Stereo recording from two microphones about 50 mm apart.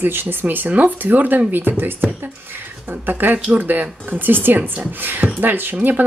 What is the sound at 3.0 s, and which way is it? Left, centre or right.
Speech, right.